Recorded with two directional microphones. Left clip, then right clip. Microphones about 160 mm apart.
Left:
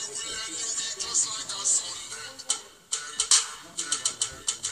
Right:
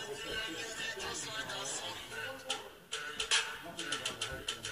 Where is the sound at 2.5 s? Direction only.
60° left (ahead or behind).